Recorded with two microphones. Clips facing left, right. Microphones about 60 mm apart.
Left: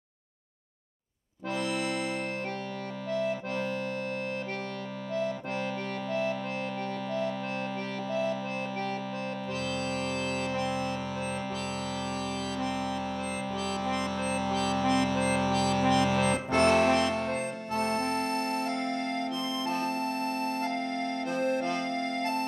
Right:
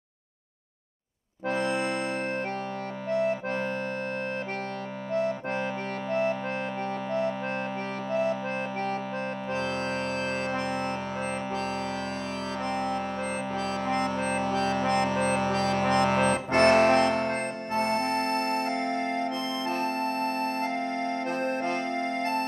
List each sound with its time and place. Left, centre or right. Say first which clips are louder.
1.5 s accordion: right 3 dB; right
3.1 s accordion: right 4 dB; right
5.1 s accordion: right 4 dB; right
7.1 s music: right 4 dB; right
9.5 s music: right 4 dB; right
12.5 s music: right 5 dB; right
18.9 s music: right 3 dB; right
19.6 s music: right 2 dB; right